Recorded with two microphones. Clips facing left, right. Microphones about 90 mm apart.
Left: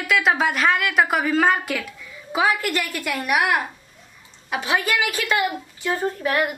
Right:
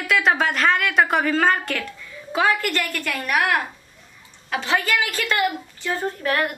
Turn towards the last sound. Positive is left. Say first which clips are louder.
# left 1 dB
turn(degrees=5)  # may be behind; listen again after turning